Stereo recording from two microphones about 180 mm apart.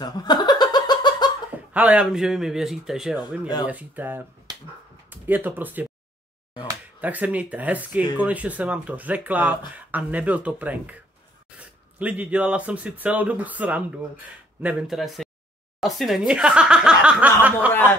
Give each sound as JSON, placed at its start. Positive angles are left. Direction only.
{"t": 0.0, "sound": "laughter", "side_deg": 25}
{"t": 1.7, "sound": "speech", "side_deg": -10}
{"t": 4.5, "sound": "finger snapping", "side_deg": -20}
{"t": 5.1, "sound": "speech", "side_deg": -10}
{"t": 7.0, "sound": "speech", "side_deg": -10}